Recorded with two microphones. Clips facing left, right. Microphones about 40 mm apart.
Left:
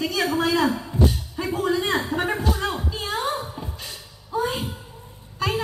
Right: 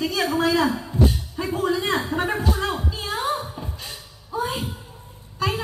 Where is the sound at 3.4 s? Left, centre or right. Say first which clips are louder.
Even; centre.